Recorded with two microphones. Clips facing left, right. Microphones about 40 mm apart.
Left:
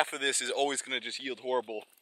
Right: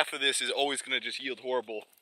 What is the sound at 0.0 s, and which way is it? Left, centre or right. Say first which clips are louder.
Speech: right 1 dB; right.